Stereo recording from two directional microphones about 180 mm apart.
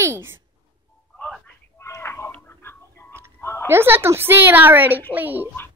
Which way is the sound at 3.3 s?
15° left (ahead or behind).